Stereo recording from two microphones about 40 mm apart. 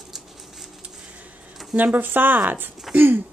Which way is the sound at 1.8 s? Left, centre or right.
Right.